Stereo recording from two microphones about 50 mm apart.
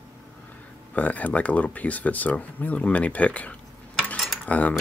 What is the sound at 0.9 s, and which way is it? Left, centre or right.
Speech, left.